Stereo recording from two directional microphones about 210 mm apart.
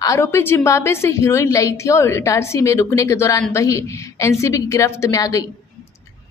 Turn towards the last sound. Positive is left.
turn(degrees=15)  # may be behind; listen again after turning